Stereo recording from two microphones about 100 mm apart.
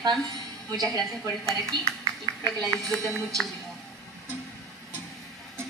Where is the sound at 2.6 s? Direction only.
Centre (ahead or behind).